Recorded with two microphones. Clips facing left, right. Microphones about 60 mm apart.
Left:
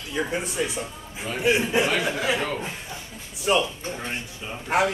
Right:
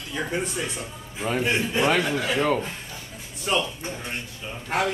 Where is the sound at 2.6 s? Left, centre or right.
Centre.